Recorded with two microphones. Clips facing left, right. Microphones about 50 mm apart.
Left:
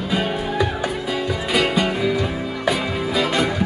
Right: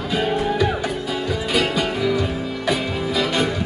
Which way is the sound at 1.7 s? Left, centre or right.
Left.